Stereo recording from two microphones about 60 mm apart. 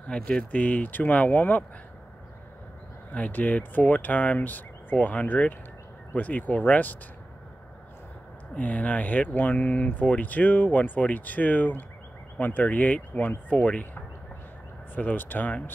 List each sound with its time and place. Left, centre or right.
0.1 s speech: centre
3.1 s speech: left
8.5 s speech: left